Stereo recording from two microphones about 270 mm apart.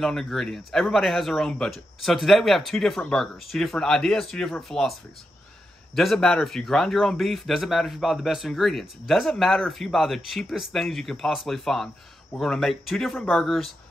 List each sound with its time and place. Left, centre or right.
0.0 s a man's voice: centre
5.9 s a man's voice: centre